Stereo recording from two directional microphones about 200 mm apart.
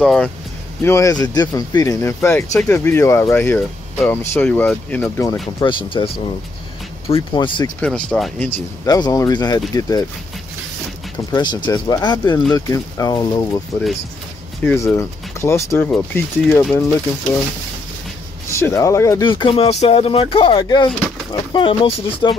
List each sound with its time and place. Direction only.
0.0 s speech: 5° left (ahead or behind)
0.8 s speech: 15° left (ahead or behind)
5.6 s speech: 25° left (ahead or behind)
7.8 s speech: 5° left (ahead or behind)
8.8 s speech: 20° left (ahead or behind)
11.3 s speech: 25° left (ahead or behind)
14.6 s speech: 10° left (ahead or behind)
18.5 s speech: 15° left (ahead or behind)